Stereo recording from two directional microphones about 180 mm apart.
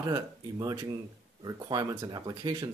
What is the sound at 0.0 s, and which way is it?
Speech, 20° right (ahead or behind).